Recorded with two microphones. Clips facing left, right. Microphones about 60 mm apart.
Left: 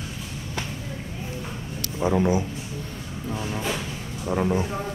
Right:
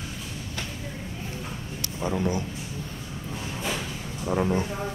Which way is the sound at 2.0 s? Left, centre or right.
Centre.